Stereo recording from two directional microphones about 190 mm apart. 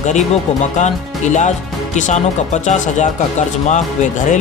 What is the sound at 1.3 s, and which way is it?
Speech, 40° left (ahead or behind).